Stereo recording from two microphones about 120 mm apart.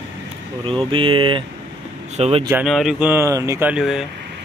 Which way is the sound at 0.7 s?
45° right (ahead or behind).